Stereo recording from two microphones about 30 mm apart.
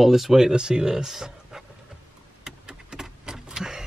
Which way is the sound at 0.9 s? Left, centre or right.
Centre.